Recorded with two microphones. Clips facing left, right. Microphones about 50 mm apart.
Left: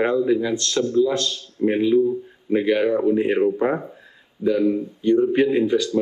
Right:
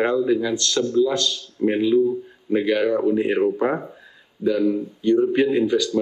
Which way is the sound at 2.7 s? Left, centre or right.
Centre.